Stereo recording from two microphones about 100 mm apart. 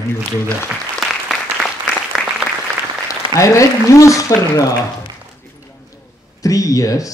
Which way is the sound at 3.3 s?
30° left (ahead or behind).